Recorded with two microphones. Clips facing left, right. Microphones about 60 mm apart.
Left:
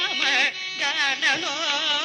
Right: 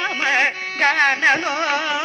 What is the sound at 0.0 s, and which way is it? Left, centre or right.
Carnatic music, right.